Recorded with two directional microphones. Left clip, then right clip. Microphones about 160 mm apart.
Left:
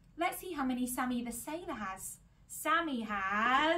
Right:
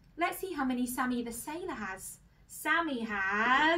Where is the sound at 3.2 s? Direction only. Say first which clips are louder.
Right 3 dB; 20° left (ahead or behind).